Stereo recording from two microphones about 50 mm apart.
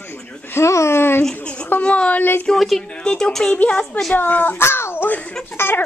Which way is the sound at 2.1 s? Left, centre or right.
Left.